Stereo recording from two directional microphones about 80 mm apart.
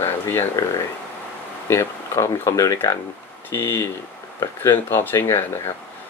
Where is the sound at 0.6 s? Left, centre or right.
Left.